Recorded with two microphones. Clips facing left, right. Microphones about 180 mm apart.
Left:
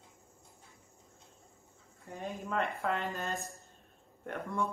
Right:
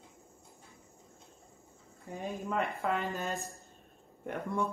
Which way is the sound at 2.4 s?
5° right (ahead or behind).